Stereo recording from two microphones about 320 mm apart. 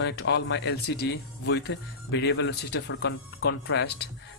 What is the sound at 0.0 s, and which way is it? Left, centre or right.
Speech, left.